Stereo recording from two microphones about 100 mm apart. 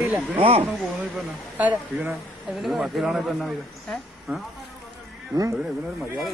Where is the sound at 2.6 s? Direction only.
Centre (ahead or behind).